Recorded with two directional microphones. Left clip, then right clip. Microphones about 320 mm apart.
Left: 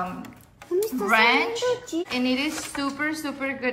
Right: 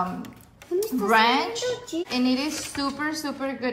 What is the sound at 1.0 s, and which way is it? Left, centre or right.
Speech, centre.